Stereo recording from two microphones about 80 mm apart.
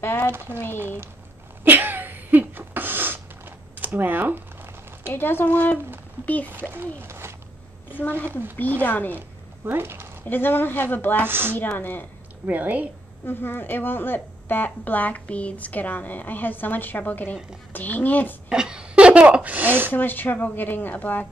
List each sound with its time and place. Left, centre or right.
0.0 s a woman's voice: left
1.6 s a sound: right
5.0 s a woman's voice: left
6.7 s speech: right
8.8 s a woman's voice: left
9.7 s speech: right
10.2 s a woman's voice: left
11.2 s speech: right
11.8 s a woman's voice: left
12.4 s speech: centre
13.2 s a woman's voice: left
18.5 s a sound: centre
19.9 s a woman's voice: left